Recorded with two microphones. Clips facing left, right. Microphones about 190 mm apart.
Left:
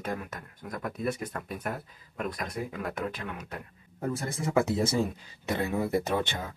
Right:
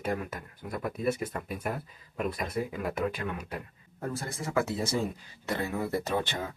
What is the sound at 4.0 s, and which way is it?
Speech, 20° left (ahead or behind).